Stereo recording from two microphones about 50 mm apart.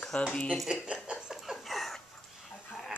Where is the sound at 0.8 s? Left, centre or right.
Centre.